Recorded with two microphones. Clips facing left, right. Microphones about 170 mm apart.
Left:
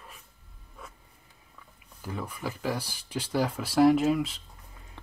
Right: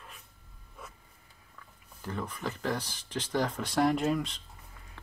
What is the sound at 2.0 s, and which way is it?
Speech, 10° left (ahead or behind).